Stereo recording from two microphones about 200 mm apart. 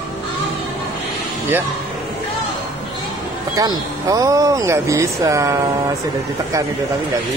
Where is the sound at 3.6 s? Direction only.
20° right (ahead or behind).